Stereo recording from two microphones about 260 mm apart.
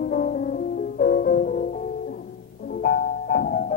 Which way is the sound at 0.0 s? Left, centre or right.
Left.